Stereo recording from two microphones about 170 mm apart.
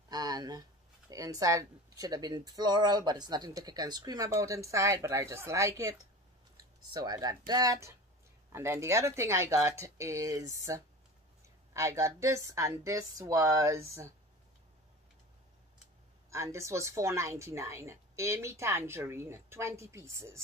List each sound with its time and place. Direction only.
0.1 s a woman's voice: 25° right (ahead or behind)
16.3 s a woman's voice: 15° right (ahead or behind)